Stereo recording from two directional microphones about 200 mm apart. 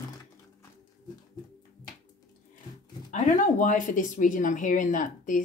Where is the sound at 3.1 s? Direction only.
40° left (ahead or behind).